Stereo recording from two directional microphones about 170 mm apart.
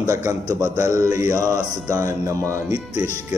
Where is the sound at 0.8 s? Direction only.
20° right (ahead or behind).